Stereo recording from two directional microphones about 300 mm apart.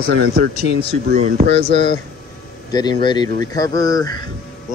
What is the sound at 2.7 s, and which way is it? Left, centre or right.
Speech, centre.